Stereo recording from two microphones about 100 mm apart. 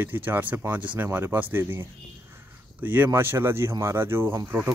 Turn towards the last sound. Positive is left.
turn(degrees=-25)  # may be behind; listen again after turning